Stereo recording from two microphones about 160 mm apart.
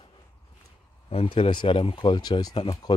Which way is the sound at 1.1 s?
35° left (ahead or behind).